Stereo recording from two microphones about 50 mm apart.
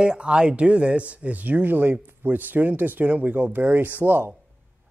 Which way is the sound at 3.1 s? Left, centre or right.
Right.